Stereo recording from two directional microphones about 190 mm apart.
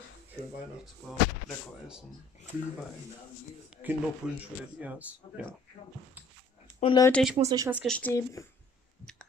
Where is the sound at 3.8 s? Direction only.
10° right (ahead or behind).